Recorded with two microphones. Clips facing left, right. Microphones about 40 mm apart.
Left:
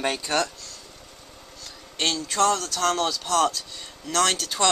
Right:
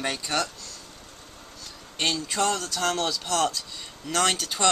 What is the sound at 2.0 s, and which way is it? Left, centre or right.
Speech, centre.